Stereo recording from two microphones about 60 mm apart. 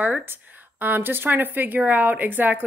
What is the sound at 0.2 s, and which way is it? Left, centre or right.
A woman's voice, right.